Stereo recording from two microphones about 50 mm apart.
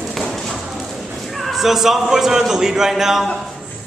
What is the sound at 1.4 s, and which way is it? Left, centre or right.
Speech, centre.